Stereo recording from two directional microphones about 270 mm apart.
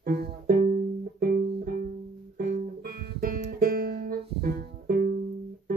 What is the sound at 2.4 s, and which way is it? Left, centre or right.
Music, right.